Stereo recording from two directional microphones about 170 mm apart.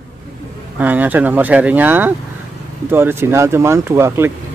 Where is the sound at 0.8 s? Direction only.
10° right (ahead or behind).